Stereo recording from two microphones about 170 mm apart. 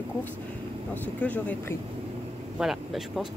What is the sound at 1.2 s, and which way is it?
Speech, 10° left (ahead or behind).